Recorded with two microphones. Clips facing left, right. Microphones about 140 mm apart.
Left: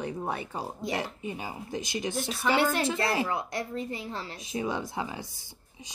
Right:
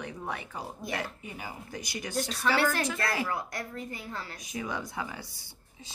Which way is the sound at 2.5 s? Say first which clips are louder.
Left 3 dB; 20° left (ahead or behind).